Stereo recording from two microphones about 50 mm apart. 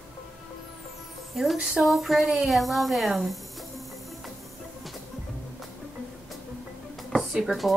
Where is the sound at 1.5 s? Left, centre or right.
Centre.